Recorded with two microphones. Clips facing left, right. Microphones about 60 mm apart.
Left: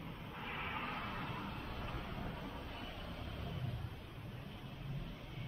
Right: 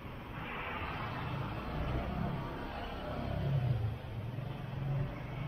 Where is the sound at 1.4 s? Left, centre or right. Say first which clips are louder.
Right 5 dB; right.